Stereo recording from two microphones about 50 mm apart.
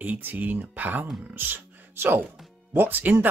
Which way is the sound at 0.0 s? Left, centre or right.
Right.